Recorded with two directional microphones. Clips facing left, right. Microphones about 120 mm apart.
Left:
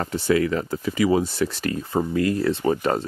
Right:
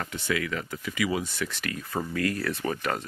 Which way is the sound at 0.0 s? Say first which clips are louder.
Left 9 dB; 35° left (ahead or behind).